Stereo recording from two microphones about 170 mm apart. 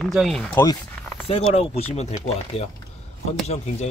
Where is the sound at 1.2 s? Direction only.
35° left (ahead or behind).